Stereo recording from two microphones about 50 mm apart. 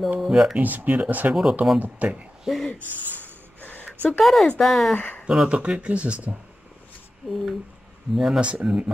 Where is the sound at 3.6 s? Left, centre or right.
Left.